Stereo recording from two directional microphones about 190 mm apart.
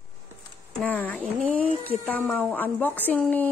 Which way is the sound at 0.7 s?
10° left (ahead or behind).